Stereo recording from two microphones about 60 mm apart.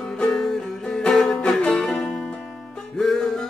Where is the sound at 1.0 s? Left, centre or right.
Centre.